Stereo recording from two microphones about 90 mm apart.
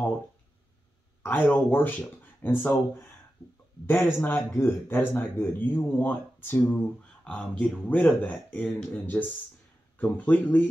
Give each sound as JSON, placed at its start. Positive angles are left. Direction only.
{"t": 1.5, "sound": "speech", "side_deg": 20}
{"t": 7.2, "sound": "speech", "side_deg": 10}